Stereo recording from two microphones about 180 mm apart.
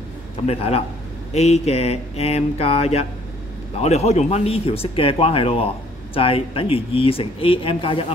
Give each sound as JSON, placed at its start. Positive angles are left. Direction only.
{"t": 0.5, "sound": "speech", "side_deg": 35}